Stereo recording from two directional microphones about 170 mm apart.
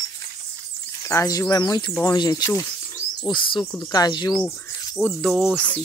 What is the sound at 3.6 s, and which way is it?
Speech, 20° left (ahead or behind).